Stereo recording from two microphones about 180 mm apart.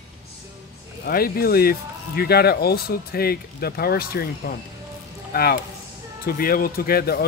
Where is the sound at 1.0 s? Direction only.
55° left (ahead or behind).